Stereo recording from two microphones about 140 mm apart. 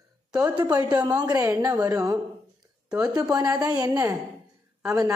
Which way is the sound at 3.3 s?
25° right (ahead or behind).